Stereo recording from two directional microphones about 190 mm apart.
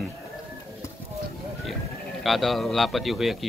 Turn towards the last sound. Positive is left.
turn(degrees=0)  # may be behind; listen again after turning